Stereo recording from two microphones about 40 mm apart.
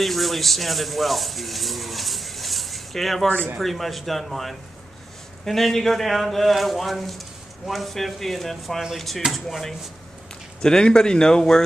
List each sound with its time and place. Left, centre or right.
0.0 s speech: centre
10.6 s speech: centre